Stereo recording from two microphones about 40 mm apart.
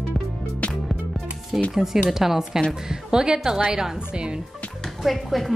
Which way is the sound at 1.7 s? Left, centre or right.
Centre.